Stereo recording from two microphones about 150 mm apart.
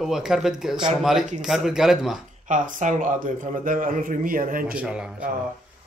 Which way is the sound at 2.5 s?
55° right (ahead or behind).